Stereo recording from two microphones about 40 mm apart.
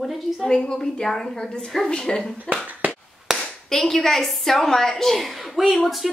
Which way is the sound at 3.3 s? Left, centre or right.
Centre.